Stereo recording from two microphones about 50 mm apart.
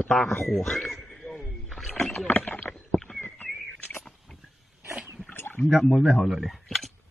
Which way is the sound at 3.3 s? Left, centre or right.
Left.